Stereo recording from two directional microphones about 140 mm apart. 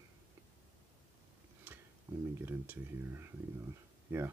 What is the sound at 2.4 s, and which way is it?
Speech, 15° right (ahead or behind).